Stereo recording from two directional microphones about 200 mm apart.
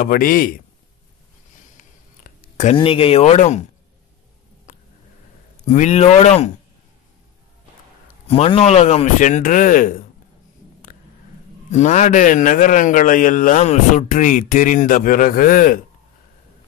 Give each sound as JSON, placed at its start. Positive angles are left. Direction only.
{"t": 0.0, "sound": "a man's voice", "side_deg": 45}
{"t": 1.8, "sound": "a sound", "side_deg": 40}
{"t": 4.7, "sound": "a sound", "side_deg": 45}
{"t": 5.7, "sound": "a man's voice", "side_deg": 35}
{"t": 8.3, "sound": "a man's voice", "side_deg": 30}
{"t": 11.7, "sound": "a man's voice", "side_deg": 35}